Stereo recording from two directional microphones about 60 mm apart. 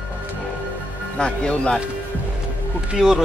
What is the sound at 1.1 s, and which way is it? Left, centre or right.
Speech, centre.